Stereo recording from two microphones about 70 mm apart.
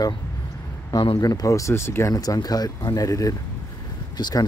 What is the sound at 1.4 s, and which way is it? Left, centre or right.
Speech, left.